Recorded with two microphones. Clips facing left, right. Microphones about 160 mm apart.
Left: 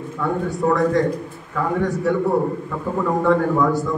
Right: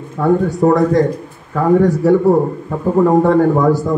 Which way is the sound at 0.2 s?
40° right (ahead or behind).